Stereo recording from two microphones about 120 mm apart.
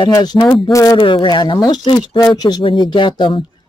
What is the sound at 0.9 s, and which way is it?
Speech, 45° left (ahead or behind).